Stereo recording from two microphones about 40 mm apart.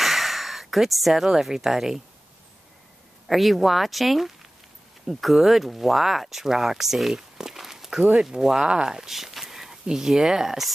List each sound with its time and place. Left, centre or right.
0.0 s speech: centre
3.3 s speech: centre
7.3 s a sound: centre
8.2 s speech: centre
9.1 s a sound: centre
9.8 s speech: centre